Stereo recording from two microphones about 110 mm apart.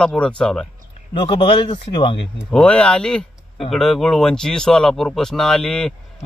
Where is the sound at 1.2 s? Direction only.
50° left (ahead or behind).